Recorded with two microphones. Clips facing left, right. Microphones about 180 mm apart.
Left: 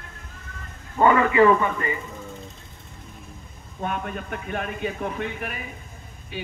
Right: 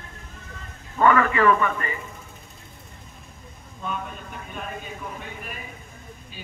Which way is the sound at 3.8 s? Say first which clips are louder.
Left 4 dB; 65° left (ahead or behind).